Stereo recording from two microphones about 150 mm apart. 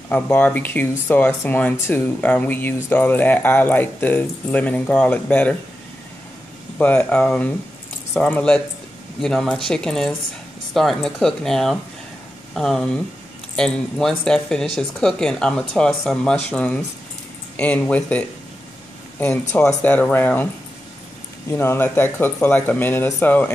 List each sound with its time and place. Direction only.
0.1 s speech: 10° left (ahead or behind)
6.8 s speech: 10° left (ahead or behind)
21.5 s speech: 15° left (ahead or behind)